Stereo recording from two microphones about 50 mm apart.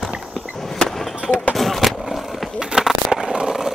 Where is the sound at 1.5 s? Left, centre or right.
Centre.